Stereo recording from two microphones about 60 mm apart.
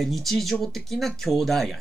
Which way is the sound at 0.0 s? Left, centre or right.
Centre.